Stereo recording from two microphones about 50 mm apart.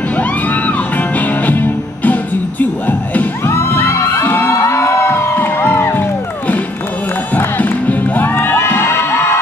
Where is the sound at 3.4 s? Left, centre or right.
Left.